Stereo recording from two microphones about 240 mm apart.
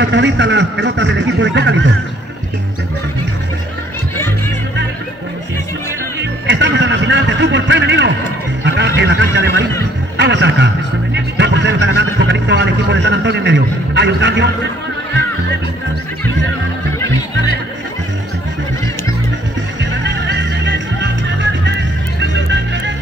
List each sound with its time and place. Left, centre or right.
0.0 s a man's voice: right
6.4 s a sound: right
8.6 s a man's voice: right
11.1 s vehicle: right
19.8 s music: right